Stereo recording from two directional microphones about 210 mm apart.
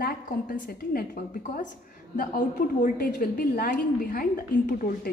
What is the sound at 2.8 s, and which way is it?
A woman's voice, 40° left (ahead or behind).